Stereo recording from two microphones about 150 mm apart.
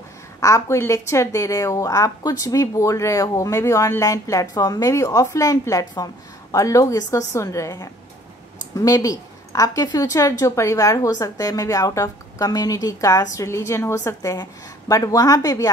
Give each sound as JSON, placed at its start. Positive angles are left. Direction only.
{"t": 0.4, "sound": "a woman's voice", "side_deg": 20}